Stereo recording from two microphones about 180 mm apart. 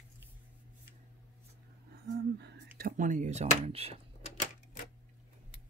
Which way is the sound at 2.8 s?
45° right (ahead or behind).